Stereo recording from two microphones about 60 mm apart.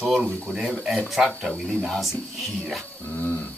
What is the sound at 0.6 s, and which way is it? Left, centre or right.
Speech, centre.